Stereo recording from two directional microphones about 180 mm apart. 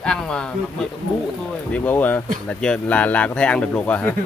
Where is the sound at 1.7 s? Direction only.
10° left (ahead or behind).